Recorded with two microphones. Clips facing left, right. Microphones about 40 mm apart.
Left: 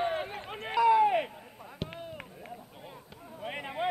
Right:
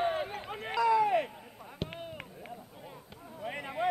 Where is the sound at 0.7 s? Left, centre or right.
Left.